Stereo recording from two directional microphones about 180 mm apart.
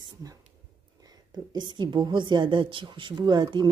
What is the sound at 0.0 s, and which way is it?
Whispering, 20° right (ahead or behind).